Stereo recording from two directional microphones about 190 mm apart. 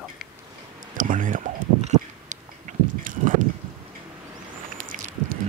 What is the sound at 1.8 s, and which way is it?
Biting, 40° right (ahead or behind).